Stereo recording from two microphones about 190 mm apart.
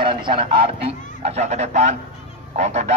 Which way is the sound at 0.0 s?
25° right (ahead or behind).